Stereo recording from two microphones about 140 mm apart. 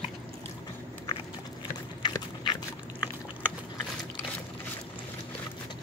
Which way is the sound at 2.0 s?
35° left (ahead or behind).